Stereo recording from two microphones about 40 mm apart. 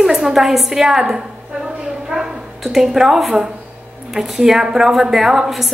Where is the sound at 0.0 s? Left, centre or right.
Centre.